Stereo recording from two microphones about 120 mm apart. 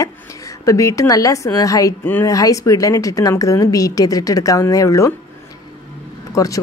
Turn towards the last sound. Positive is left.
turn(degrees=30)  # may be behind; listen again after turning